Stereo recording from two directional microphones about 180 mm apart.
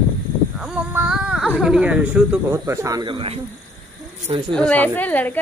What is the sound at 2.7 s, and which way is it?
Speech, 20° right (ahead or behind).